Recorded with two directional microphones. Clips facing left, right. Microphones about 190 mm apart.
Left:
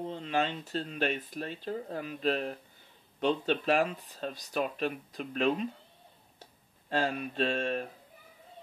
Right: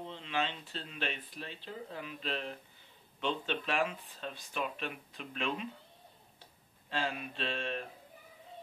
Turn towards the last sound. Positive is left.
turn(degrees=45)  # may be behind; listen again after turning